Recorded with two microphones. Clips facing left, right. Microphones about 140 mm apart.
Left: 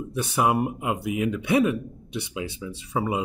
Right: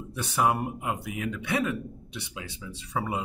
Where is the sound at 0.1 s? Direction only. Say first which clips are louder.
Left 3 dB; 15° left (ahead or behind).